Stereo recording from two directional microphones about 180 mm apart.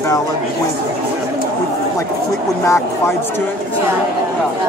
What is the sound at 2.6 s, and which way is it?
Speech, 15° left (ahead or behind).